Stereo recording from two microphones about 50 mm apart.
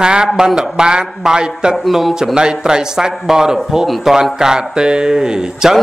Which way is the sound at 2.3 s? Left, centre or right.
Centre.